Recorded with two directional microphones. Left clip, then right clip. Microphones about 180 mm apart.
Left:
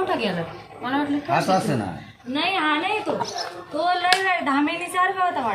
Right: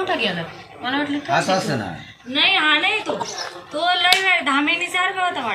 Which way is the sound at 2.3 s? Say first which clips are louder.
Right 6 dB; 45° left (ahead or behind).